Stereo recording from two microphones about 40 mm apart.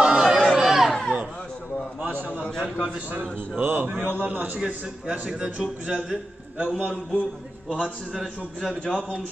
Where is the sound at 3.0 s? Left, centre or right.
Right.